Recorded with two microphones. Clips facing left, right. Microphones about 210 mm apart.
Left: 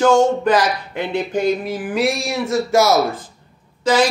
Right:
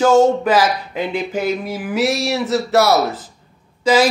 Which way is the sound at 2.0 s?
80° right.